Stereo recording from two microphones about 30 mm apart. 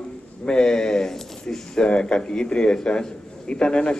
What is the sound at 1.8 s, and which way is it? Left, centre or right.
Speech, left.